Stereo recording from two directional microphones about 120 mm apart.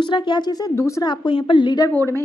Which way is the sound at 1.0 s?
40° left (ahead or behind).